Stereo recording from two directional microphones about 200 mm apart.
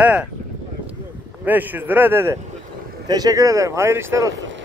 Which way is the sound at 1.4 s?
10° right (ahead or behind).